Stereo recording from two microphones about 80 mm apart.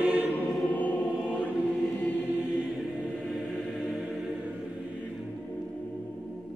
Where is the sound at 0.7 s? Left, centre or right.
Left.